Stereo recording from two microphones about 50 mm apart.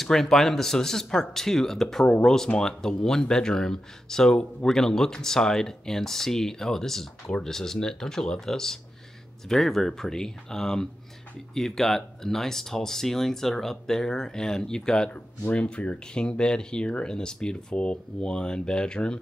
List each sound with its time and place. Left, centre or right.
0.0 s speech: centre
15.1 s speech: left